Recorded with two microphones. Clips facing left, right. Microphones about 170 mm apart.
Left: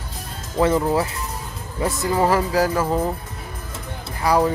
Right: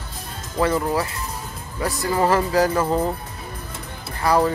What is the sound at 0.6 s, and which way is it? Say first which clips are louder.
Speech: left 2 dB; 20° left (ahead or behind).